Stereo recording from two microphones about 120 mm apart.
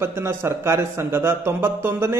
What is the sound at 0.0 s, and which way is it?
Speech, 20° right (ahead or behind).